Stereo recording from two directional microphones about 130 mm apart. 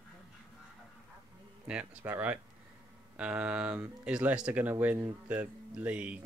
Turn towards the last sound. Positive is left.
turn(degrees=-10)  # may be behind; listen again after turning